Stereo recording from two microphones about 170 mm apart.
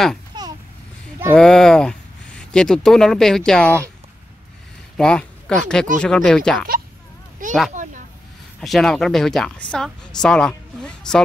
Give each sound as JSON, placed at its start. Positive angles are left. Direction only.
{"t": 0.3, "sound": "babbling", "side_deg": -25}
{"t": 1.3, "sound": "speech", "side_deg": 5}
{"t": 4.9, "sound": "a woman's voice", "side_deg": 5}
{"t": 7.7, "sound": "a sound", "side_deg": -50}
{"t": 8.5, "sound": "a woman's voice", "side_deg": 0}